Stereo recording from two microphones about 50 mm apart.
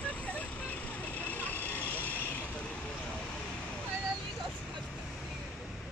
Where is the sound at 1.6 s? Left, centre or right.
Left.